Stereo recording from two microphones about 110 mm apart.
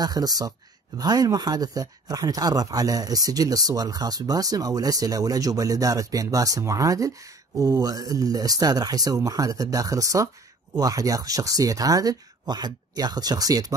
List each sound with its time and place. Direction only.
0.0 s speech: 35° right (ahead or behind)